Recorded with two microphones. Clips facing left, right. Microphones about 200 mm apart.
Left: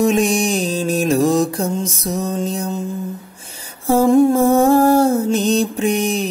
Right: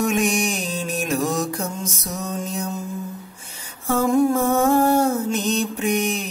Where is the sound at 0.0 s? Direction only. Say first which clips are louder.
Left 5 dB; 30° left (ahead or behind).